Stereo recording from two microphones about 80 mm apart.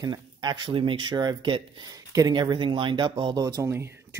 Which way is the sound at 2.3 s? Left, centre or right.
Right.